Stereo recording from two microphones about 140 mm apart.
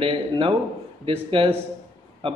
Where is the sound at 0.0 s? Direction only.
40° right (ahead or behind).